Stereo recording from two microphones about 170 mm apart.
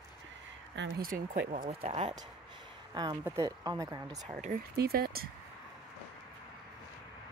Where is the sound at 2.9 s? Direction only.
25° right (ahead or behind).